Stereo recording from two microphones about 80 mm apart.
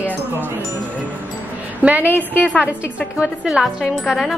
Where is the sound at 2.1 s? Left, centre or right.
Left.